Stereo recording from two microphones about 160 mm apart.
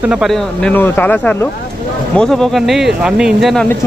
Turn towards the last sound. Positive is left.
turn(degrees=0)  # may be behind; listen again after turning